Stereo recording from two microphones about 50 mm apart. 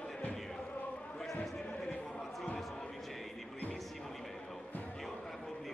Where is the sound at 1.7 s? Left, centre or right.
Centre.